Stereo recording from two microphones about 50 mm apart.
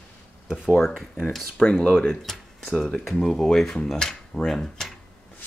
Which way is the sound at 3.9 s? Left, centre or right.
Centre.